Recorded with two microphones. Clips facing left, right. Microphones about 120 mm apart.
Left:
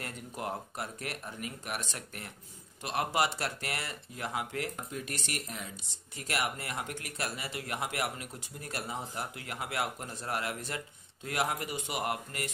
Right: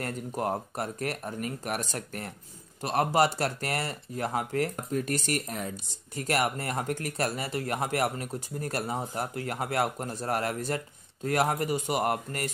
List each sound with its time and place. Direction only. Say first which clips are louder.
0.0 s speech: right 7 dB; 40° right (ahead or behind)